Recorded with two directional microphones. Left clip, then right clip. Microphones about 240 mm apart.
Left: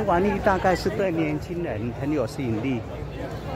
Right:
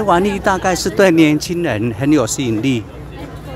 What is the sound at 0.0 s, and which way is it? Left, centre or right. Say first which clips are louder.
Speech: right 7 dB; centre.